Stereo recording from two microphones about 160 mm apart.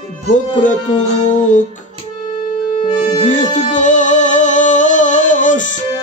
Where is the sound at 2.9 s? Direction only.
50° left (ahead or behind).